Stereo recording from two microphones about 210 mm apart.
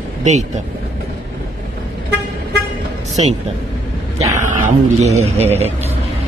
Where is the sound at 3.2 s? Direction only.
30° right (ahead or behind).